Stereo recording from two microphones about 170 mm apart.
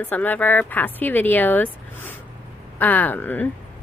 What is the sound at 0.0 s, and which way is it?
A woman's voice, 10° left (ahead or behind).